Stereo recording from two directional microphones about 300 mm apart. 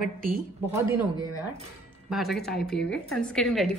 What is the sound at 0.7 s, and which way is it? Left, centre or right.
Speech, centre.